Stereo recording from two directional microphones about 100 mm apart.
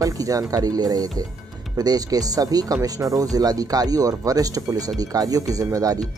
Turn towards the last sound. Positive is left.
turn(degrees=-35)  # may be behind; listen again after turning